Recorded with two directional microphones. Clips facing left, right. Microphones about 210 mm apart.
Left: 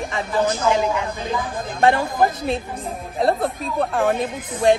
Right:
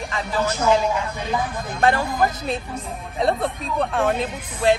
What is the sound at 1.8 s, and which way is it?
Speech, 25° left (ahead or behind).